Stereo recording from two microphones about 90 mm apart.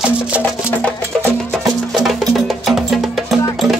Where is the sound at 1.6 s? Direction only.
5° right (ahead or behind).